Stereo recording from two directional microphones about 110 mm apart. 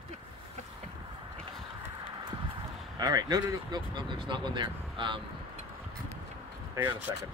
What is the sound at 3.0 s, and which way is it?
Speech, 35° right (ahead or behind).